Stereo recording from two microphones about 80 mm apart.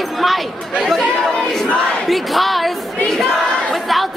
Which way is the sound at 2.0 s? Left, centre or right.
Centre.